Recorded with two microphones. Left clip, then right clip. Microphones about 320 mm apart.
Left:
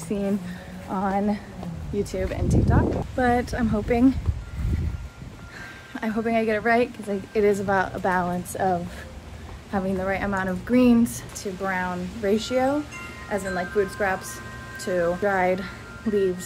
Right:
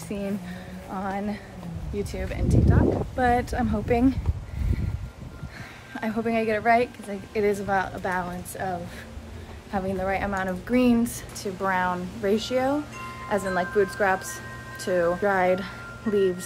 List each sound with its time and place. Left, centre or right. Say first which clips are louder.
0.1 s a woman's voice: left 5 dB; centre
5.9 s a woman's voice: left 2 dB; centre